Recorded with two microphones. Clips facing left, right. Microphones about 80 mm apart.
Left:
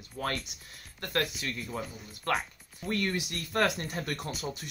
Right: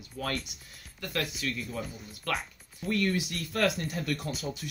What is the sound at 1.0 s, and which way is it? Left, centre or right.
Speech, left.